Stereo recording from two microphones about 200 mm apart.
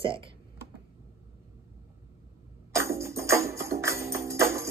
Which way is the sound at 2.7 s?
15° right (ahead or behind).